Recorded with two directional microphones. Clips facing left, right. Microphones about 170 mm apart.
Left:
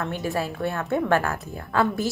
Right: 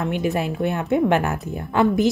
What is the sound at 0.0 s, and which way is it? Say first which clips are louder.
A woman's voice: right 4 dB; 15° right (ahead or behind).